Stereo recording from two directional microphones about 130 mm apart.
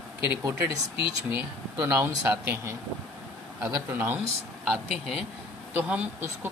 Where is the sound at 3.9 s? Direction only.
15° right (ahead or behind).